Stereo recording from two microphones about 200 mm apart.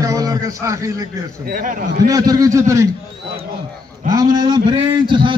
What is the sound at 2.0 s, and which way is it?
Speech, 20° right (ahead or behind).